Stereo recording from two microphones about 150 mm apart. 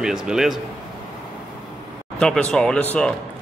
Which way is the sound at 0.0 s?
5° right (ahead or behind).